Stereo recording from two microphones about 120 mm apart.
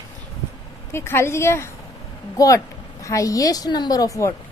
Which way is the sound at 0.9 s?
20° left (ahead or behind).